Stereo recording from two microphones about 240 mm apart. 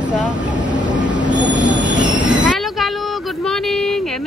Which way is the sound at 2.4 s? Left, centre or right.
Centre.